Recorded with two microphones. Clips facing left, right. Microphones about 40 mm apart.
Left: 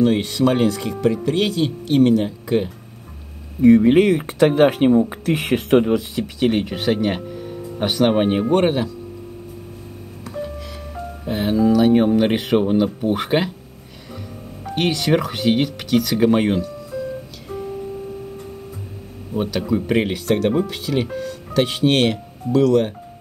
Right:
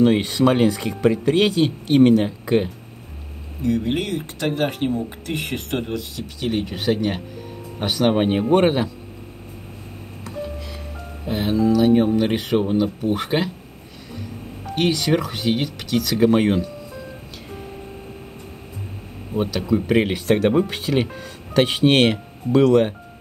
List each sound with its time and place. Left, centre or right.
0.0 s speech: centre
3.6 s speech: left
5.9 s speech: left
6.6 s speech: centre
8.5 s speech: centre
11.2 s speech: centre
14.8 s speech: centre
19.3 s speech: centre
20.1 s speech: centre